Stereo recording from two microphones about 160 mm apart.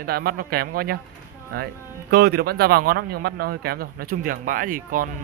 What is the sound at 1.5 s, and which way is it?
Speech, 80° right.